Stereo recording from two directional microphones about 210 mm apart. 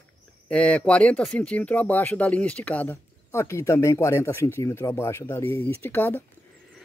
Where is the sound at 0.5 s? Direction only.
5° left (ahead or behind).